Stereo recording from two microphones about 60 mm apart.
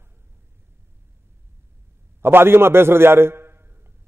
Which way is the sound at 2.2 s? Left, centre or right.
Right.